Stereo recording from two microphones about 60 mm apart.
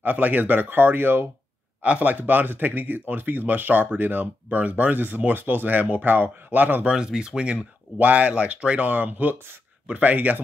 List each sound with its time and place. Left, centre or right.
0.0 s speech: right
1.8 s speech: right
6.9 s speech: centre